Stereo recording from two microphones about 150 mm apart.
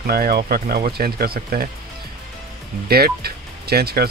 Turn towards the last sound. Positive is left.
turn(degrees=-90)